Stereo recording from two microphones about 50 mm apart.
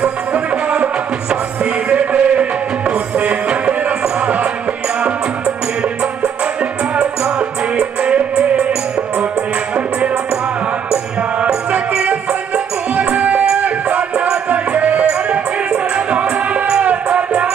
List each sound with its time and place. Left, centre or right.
1.3 s music: right
9.8 s music: right
13.2 s music: right
13.9 s music: centre
15.7 s music: right